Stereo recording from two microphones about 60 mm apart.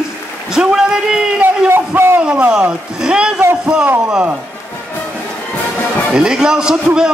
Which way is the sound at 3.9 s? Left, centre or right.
Right.